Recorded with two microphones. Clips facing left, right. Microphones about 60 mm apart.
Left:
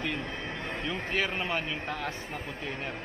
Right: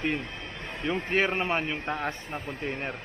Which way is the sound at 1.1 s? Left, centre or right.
Right.